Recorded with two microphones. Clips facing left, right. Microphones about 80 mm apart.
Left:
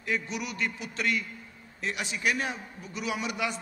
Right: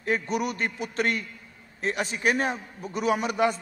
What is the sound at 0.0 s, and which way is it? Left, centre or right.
A man's voice, right.